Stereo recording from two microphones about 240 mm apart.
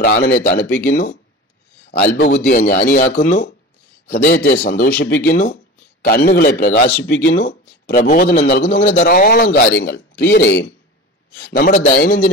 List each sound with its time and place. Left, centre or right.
0.0 s a man's voice: left